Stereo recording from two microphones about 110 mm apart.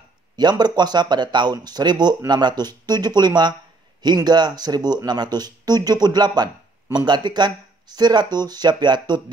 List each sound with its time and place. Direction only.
0.4 s speech: 40° right (ahead or behind)